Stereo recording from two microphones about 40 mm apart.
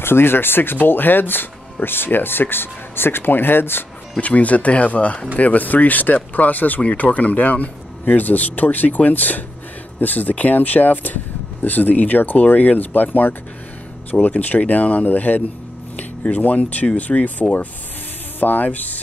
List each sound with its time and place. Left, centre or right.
0.0 s speech: left
4.2 s speech: left